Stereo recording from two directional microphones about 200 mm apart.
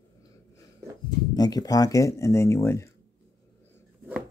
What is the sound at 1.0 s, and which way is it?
Speech, 20° left (ahead or behind).